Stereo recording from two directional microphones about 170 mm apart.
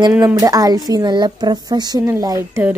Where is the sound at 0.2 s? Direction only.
20° right (ahead or behind).